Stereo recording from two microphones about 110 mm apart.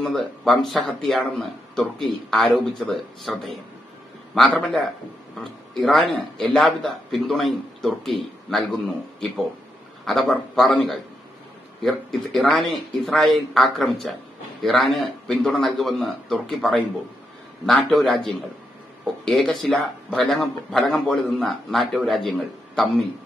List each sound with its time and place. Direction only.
0.0 s speech: 5° left (ahead or behind)
4.4 s a man's voice: centre (ahead or behind)